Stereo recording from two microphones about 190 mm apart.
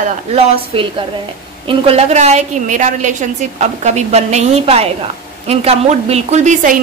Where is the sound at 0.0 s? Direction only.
35° right (ahead or behind).